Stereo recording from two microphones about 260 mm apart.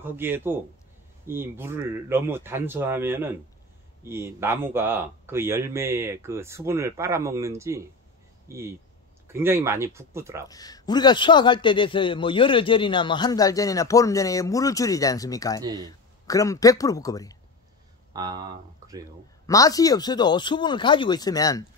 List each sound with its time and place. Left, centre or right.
0.0 s speech: centre
10.5 s a man's voice: centre
18.1 s speech: centre
19.4 s a man's voice: centre